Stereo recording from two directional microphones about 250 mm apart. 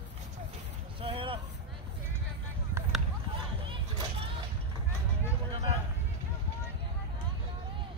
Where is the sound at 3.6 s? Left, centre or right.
Centre.